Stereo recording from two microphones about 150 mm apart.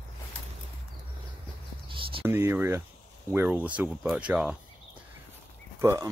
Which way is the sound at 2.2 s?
15° right (ahead or behind).